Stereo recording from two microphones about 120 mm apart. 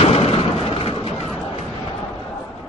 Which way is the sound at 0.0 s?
55° left (ahead or behind).